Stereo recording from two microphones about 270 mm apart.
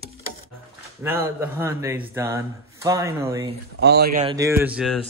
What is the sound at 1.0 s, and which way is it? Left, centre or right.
A man's voice, centre.